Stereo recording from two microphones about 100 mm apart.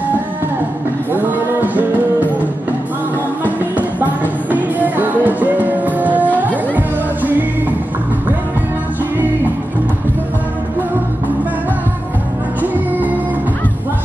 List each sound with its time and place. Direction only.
3.4 s music: 15° right (ahead or behind)